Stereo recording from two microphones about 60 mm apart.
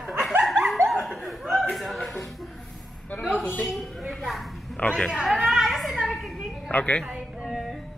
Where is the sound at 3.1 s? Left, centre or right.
Left.